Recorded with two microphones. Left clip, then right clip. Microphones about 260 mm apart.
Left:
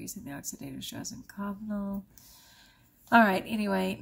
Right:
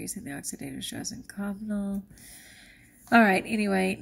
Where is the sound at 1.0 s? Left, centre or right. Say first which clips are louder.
Right 2 dB; left.